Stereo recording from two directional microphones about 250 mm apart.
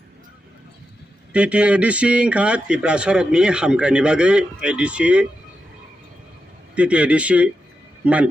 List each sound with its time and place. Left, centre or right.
1.3 s a man's voice: centre
6.7 s a man's voice: centre